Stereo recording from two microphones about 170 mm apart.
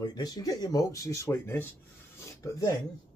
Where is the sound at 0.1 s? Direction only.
20° left (ahead or behind).